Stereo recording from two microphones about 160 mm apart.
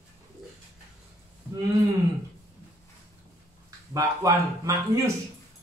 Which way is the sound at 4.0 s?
20° right (ahead or behind).